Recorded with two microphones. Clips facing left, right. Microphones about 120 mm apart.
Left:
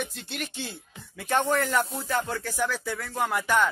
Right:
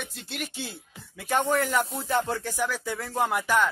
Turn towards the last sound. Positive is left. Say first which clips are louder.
# even
turn(degrees=-5)  # may be behind; listen again after turning